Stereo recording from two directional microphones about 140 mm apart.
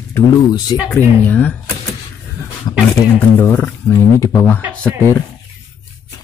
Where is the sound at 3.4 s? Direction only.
15° left (ahead or behind).